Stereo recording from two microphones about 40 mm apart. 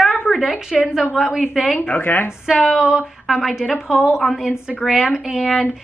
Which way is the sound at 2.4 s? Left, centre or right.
Centre.